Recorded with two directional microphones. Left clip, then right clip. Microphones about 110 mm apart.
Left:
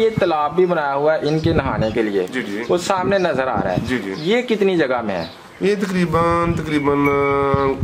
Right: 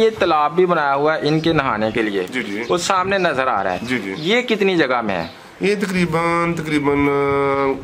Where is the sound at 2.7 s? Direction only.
40° right (ahead or behind).